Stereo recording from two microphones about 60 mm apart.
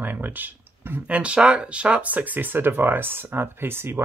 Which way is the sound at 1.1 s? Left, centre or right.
Centre.